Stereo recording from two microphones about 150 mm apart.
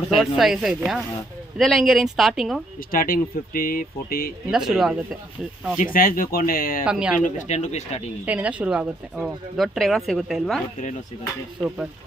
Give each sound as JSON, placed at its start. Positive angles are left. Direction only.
{"t": 0.1, "sound": "speech", "side_deg": 0}
{"t": 2.9, "sound": "speech", "side_deg": 70}
{"t": 4.5, "sound": "speech", "side_deg": -5}
{"t": 5.8, "sound": "speech", "side_deg": 70}
{"t": 6.8, "sound": "speech", "side_deg": -5}
{"t": 7.2, "sound": "speech", "side_deg": 50}
{"t": 8.3, "sound": "speech", "side_deg": -10}